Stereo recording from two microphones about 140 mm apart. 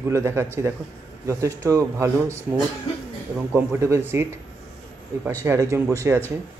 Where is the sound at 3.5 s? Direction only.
15° right (ahead or behind).